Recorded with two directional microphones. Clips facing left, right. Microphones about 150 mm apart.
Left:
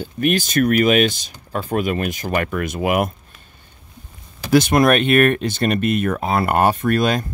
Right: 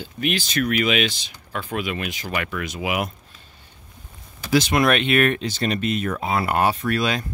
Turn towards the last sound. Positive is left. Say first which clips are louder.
# left 5 dB
turn(degrees=45)  # may be behind; listen again after turning